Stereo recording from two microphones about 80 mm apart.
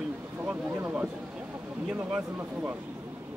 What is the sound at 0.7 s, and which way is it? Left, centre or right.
Speech, right.